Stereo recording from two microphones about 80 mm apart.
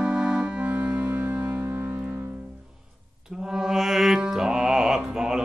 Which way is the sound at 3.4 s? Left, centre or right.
Centre.